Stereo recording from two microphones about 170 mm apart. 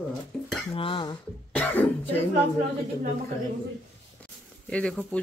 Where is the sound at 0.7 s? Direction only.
30° left (ahead or behind).